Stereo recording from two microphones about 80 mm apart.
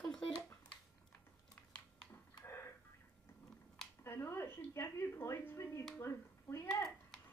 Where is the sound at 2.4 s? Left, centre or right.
Left.